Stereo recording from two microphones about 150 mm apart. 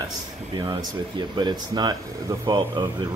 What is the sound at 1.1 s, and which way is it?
Speech, 30° right (ahead or behind).